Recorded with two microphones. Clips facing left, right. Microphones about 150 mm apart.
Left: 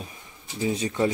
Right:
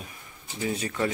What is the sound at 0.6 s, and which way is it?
Speech, 20° left (ahead or behind).